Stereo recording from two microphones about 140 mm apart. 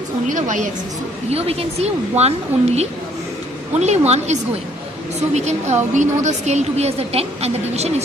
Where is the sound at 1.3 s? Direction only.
45° right (ahead or behind).